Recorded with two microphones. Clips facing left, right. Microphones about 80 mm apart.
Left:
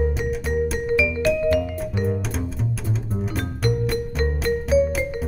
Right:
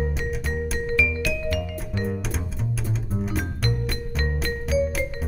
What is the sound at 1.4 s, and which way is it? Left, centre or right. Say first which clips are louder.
Music: left 8 dB; left.